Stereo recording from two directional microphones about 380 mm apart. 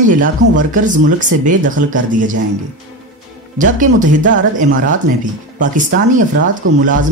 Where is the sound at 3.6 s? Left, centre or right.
Centre.